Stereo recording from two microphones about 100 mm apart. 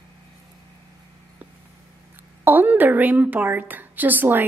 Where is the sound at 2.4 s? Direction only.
20° right (ahead or behind).